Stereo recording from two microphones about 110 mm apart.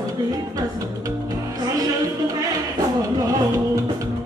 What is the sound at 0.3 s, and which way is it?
Music, 30° right (ahead or behind).